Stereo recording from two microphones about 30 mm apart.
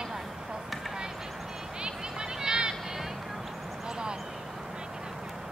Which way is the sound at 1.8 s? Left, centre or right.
Right.